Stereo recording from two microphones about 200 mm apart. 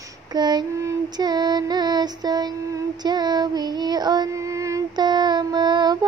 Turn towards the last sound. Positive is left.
turn(degrees=-20)  # may be behind; listen again after turning